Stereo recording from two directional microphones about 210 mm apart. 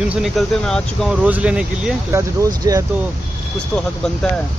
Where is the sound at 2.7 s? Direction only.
15° right (ahead or behind).